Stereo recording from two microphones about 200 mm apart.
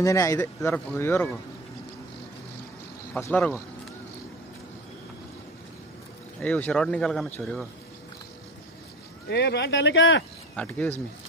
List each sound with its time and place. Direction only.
0.0 s speech: 15° left (ahead or behind)
3.2 s speech: 10° left (ahead or behind)
6.4 s speech: 5° left (ahead or behind)
9.3 s speech: 55° left (ahead or behind)
10.5 s speech: 5° left (ahead or behind)